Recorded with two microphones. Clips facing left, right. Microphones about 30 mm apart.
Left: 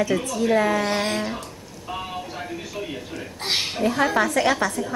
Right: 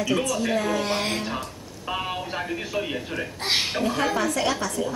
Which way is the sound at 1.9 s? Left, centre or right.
Right.